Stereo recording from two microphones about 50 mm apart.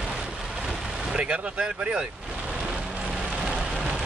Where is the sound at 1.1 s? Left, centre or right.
Right.